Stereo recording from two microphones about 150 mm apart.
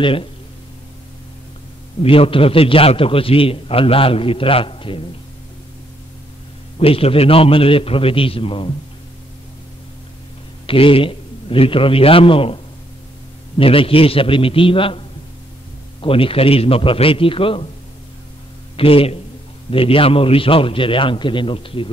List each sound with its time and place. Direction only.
0.0 s a man's voice: 35° left (ahead or behind)
2.0 s a man's voice: 35° left (ahead or behind)
6.8 s a man's voice: 40° left (ahead or behind)
10.7 s a man's voice: 35° left (ahead or behind)
13.6 s a man's voice: 40° left (ahead or behind)
18.8 s a man's voice: 40° left (ahead or behind)